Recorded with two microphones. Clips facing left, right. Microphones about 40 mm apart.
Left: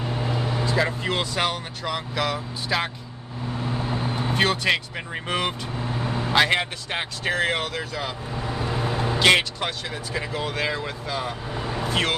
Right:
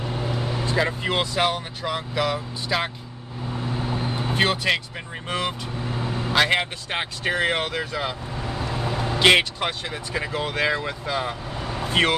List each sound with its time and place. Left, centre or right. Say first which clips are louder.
0.4 s vehicle: left 1 dB; centre
0.7 s speech: right 2 dB; centre
3.6 s vehicle: even; centre
4.4 s speech: even; centre
4.9 s speech: left 2 dB; centre
6.1 s vehicle: left 1 dB; centre
6.4 s speech: even; centre
7.4 s speech: right 2 dB; right
8.4 s vehicle: left 3 dB; centre
9.2 s speech: right 2 dB; centre
11.5 s vehicle: left 1 dB; centre
11.9 s speech: right 4 dB; right